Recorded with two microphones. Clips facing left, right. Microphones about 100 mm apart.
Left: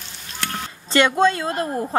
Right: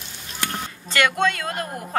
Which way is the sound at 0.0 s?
15° right (ahead or behind).